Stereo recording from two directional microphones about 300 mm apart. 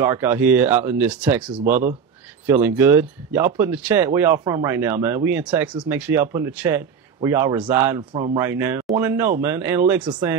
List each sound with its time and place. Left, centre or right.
0.0 s speech: centre
1.6 s speech: right
2.4 s speech: centre